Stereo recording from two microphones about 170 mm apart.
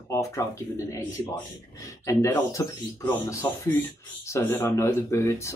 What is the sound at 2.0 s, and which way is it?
Speech, 20° left (ahead or behind).